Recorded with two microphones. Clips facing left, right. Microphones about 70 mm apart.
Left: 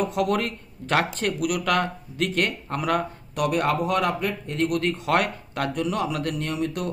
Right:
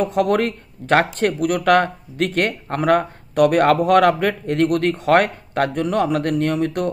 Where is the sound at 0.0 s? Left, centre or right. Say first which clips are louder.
Right 6 dB; right.